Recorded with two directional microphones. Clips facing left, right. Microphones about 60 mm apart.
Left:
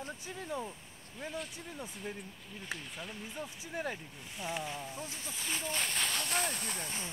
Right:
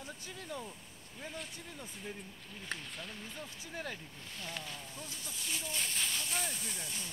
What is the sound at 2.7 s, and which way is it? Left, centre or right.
Speech, centre.